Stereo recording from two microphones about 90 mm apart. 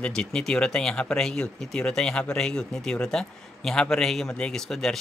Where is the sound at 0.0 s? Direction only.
10° left (ahead or behind).